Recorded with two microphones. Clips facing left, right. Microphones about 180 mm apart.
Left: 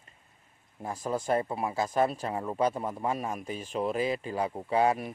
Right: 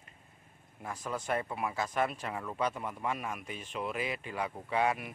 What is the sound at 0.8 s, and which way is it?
Speech, 30° left (ahead or behind).